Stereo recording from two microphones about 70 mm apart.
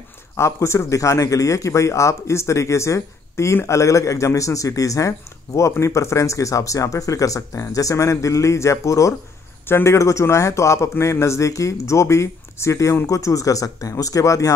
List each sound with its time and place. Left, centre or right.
0.4 s speech: left